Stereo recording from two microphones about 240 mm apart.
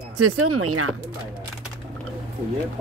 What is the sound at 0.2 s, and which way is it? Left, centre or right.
Speech, right.